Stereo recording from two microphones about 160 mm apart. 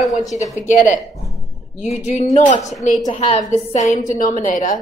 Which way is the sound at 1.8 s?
45° left (ahead or behind).